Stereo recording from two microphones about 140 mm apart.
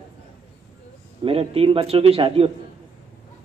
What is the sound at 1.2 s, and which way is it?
A man's voice, 40° right (ahead or behind).